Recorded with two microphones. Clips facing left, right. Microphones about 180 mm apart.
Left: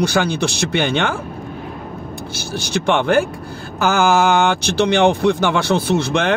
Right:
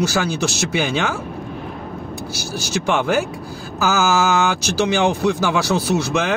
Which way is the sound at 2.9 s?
55° left (ahead or behind).